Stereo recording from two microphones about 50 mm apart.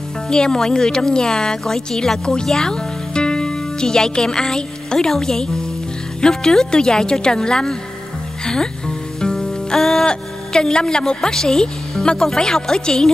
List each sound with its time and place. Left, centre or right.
0.3 s a woman's voice: centre
8.5 s music: centre
10.0 s a woman's voice: centre